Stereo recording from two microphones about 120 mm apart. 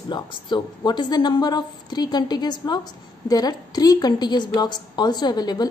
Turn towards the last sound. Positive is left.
turn(degrees=35)  # may be behind; listen again after turning